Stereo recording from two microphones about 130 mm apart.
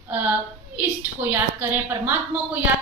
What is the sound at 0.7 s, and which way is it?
A woman's voice, 15° right (ahead or behind).